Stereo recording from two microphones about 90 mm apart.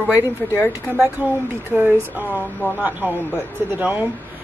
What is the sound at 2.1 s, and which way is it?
A woman's voice, 20° right (ahead or behind).